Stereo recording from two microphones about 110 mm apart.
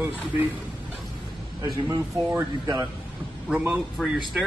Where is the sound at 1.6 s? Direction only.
30° right (ahead or behind).